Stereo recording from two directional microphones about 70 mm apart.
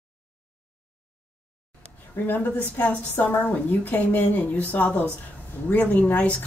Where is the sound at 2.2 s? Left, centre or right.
Left.